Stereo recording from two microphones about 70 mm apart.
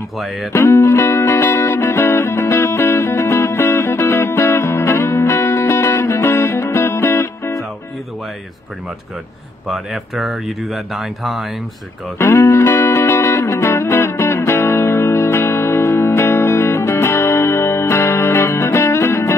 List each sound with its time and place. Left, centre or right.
0.5 s music: left
9.7 s speech: centre
12.2 s music: left